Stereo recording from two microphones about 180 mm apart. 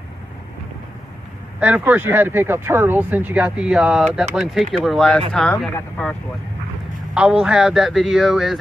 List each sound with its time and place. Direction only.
1.6 s speech: 10° right (ahead or behind); by 6.1 s 10° left (ahead or behind)
7.2 s speech: 5° right (ahead or behind)